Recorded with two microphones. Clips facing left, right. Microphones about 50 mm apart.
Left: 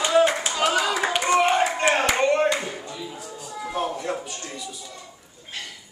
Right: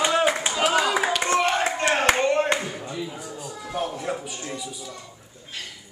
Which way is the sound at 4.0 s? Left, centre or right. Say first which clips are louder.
Even; centre.